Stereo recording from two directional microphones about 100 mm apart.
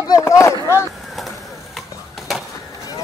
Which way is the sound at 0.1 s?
30° left (ahead or behind).